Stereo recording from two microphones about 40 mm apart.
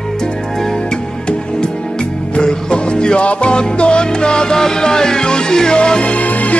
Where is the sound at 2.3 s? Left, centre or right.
Left.